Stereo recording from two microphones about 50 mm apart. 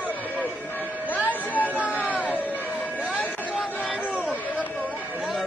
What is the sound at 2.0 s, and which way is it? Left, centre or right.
Music, left.